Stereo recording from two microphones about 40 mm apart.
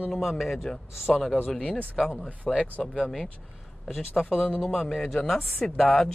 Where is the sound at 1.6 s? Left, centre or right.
Left.